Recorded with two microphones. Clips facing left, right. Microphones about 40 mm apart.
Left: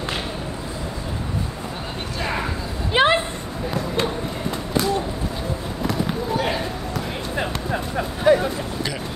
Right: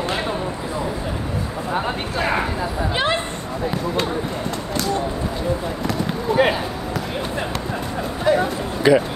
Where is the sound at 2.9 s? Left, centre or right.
Left.